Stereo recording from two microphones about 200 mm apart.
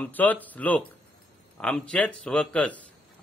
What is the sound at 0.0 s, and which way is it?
A man's voice, 10° left (ahead or behind).